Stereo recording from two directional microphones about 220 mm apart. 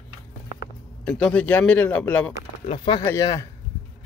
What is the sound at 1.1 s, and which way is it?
Speech, 5° left (ahead or behind).